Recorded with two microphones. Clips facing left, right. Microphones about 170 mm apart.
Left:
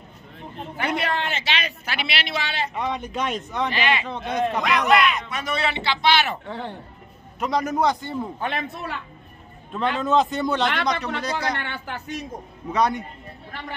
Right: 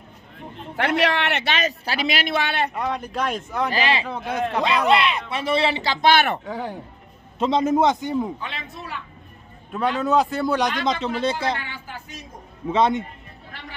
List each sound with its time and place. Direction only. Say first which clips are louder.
0.7 s a man's voice: right 4 dB; 90° right; by 1.5 s 70° right (ahead or behind)
1.5 s a man's voice: right 4 dB; 40° right (ahead or behind); by 2.7 s 60° right (ahead or behind)
2.7 s speech: right 1 dB; centre (ahead or behind)
3.7 s speech: right 2 dB; 35° right (ahead or behind)
4.1 s speech: left 1 dB; 5° right (ahead or behind)
4.6 s speech: right 2 dB; 30° right (ahead or behind)
5.9 s a man's voice: right 4 dB; 50° right (ahead or behind)
6.4 s speech: right 3 dB; 10° right (ahead or behind)
7.3 s speech: right 4 dB; 25° right (ahead or behind)
8.4 s speech: left 6 dB; 55° left (ahead or behind)
9.7 s speech: right 1 dB; centre (ahead or behind)
10.8 s speech: right 2 dB; 25° right (ahead or behind)
11.6 s speech: left 4 dB; 70° left (ahead or behind)
12.7 s speech: right 2 dB; 25° right (ahead or behind)